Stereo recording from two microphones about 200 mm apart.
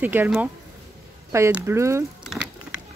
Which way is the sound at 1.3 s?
10° right (ahead or behind).